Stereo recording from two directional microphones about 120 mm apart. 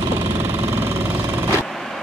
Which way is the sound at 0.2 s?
25° right (ahead or behind).